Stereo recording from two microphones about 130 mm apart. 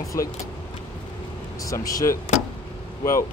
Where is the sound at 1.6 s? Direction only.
25° left (ahead or behind).